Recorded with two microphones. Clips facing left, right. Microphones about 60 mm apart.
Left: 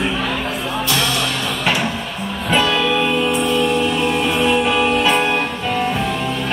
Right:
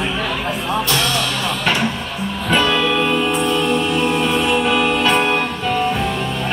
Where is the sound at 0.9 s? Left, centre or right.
Centre.